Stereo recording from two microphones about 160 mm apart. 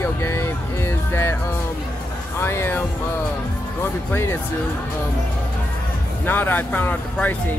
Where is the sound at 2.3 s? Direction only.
15° left (ahead or behind).